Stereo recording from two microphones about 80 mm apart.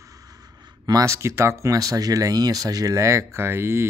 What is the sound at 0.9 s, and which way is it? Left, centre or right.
Speech, right.